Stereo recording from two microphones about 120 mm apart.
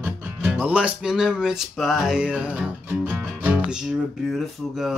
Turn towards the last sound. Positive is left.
turn(degrees=-5)  # may be behind; listen again after turning